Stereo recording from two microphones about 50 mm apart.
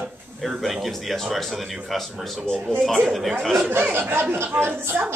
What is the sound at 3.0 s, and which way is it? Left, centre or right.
Speech, centre.